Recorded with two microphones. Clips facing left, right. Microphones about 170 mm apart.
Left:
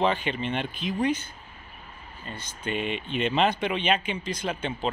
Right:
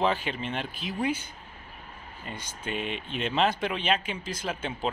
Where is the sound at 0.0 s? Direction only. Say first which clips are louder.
Left 2 dB; 5° right (ahead or behind).